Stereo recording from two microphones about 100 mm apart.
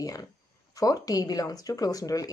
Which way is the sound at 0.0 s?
35° left (ahead or behind).